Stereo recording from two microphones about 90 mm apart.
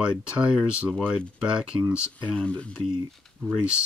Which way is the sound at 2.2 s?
15° left (ahead or behind).